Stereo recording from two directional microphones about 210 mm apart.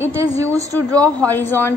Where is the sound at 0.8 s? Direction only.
5° left (ahead or behind).